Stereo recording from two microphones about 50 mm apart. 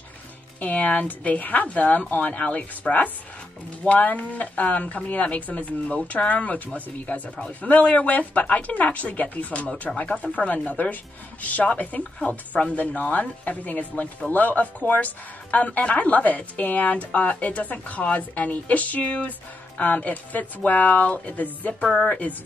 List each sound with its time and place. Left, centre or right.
0.6 s speech: left
22.0 s speech: centre